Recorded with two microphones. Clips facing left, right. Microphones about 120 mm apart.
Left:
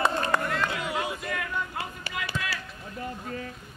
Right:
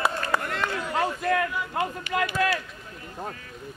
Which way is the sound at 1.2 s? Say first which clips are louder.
Right 9 dB; 60° right (ahead or behind).